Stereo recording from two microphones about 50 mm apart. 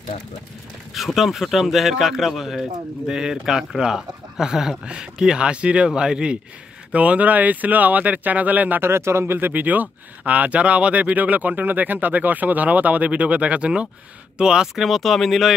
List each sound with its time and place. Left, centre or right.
0.9 s speech: centre
6.9 s speech: right
8.8 s speech: right
9.2 s speech: right; by 14.9 s centre
14.9 s speech: centre